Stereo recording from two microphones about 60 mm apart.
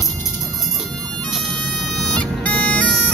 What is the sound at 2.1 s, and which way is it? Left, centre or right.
Music, left.